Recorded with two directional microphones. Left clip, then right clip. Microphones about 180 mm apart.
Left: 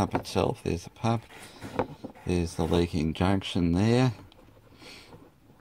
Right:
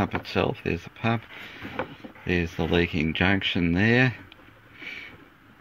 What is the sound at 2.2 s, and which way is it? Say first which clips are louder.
Speech: right 3 dB; 15° left (ahead or behind).